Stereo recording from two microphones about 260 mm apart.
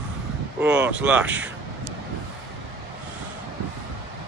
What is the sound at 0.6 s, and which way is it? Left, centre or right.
Speech, centre.